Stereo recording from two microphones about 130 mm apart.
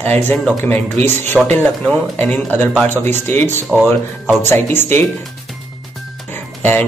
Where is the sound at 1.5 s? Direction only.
10° left (ahead or behind).